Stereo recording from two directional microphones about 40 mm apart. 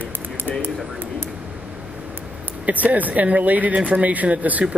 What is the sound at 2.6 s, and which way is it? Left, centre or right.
Speech, right.